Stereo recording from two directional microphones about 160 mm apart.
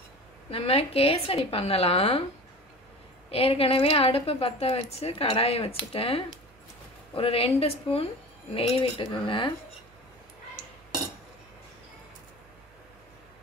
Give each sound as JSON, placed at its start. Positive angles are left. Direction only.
{"t": 0.5, "sound": "a woman's voice", "side_deg": 35}
{"t": 3.3, "sound": "a woman's voice", "side_deg": 35}